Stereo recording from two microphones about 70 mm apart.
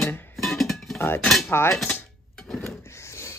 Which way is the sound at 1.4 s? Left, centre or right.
Left.